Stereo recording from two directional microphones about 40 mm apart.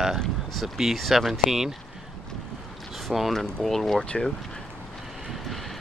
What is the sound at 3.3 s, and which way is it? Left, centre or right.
Speech, centre.